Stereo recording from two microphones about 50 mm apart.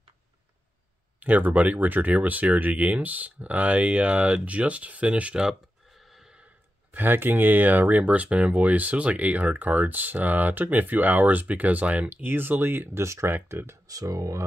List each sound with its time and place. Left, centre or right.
1.2 s speech: right
6.0 s snort: centre
7.0 s speech: right
12.2 s speech: right
13.0 s speech: right
13.3 s speech: right